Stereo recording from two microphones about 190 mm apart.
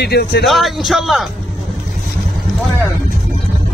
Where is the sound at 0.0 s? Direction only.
60° left (ahead or behind).